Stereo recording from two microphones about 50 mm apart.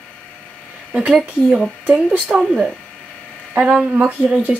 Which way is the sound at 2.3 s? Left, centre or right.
Centre.